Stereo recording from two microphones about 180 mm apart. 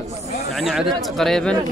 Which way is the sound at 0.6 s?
Centre (ahead or behind).